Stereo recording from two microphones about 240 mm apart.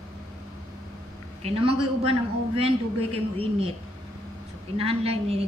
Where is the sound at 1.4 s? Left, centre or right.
Right.